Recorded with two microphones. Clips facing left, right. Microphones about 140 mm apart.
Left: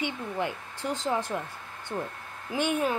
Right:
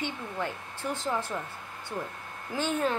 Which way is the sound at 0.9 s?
15° left (ahead or behind).